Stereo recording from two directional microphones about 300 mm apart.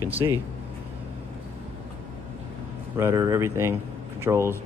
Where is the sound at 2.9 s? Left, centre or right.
Centre.